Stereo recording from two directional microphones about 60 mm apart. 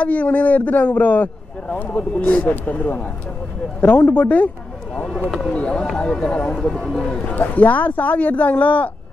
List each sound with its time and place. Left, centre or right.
0.0 s a man's voice: left
4.9 s a man's voice: centre
7.3 s a man's voice: left